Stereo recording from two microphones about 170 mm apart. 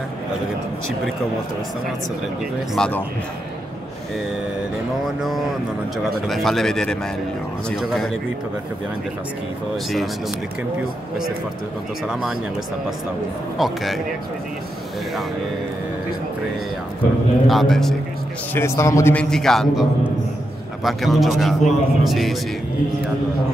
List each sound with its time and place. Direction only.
2.7 s a man's voice: 5° left (ahead or behind)
5.0 s a man's voice: centre (ahead or behind)
13.6 s a man's voice: centre (ahead or behind)
17.5 s a man's voice: centre (ahead or behind)
18.5 s a man's voice: 15° left (ahead or behind)
19.1 s a man's voice: 5° left (ahead or behind)